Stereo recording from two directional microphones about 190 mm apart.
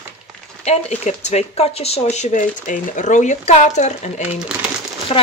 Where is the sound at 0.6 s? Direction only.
35° left (ahead or behind).